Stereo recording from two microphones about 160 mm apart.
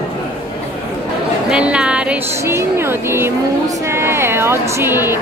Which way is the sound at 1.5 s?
5° right (ahead or behind).